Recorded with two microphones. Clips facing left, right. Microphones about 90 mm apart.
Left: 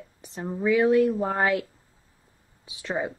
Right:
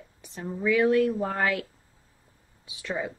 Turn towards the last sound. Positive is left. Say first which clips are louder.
# left 3 dB
turn(degrees=25)  # may be behind; listen again after turning